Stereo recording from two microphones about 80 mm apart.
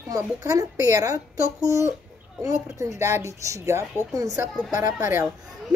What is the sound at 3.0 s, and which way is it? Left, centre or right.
A woman's voice, right.